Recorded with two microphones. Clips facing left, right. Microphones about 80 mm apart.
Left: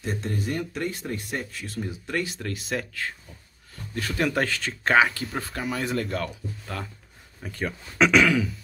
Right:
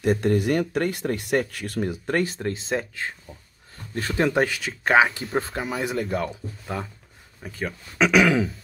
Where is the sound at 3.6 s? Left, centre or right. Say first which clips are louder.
Right 2 dB; right.